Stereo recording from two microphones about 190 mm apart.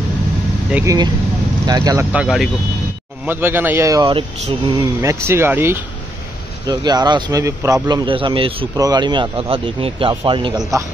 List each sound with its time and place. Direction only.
0.8 s a man's voice: 20° right (ahead or behind)
2.1 s a man's voice: centre (ahead or behind); by 5.1 s 25° right (ahead or behind)
5.2 s a man's voice: 10° right (ahead or behind)
10.5 s speech: centre (ahead or behind)